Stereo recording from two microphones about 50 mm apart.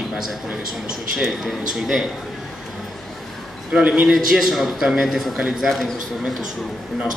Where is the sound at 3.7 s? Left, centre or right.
Centre.